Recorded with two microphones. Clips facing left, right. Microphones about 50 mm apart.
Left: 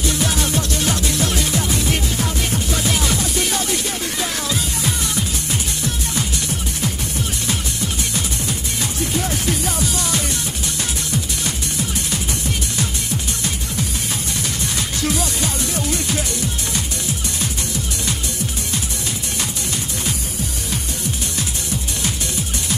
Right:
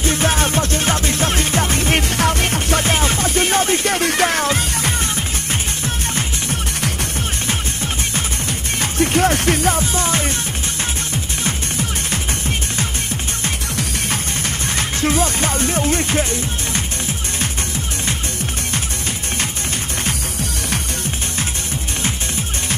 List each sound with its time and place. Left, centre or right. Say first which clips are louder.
0.0 s music: right 3 dB; right
9.8 s music: right 3 dB; right
12.1 s music: right 1 dB; right
14.8 s music: right 5 dB; right